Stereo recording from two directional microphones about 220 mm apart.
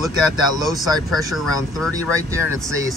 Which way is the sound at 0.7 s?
Centre (ahead or behind).